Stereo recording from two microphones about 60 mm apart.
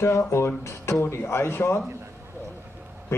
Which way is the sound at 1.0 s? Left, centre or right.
Left.